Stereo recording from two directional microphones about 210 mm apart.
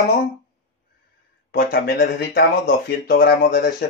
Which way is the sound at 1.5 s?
45° left (ahead or behind).